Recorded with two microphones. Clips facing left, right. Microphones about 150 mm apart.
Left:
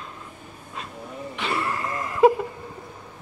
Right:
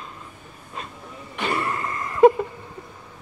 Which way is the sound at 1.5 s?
Centre (ahead or behind).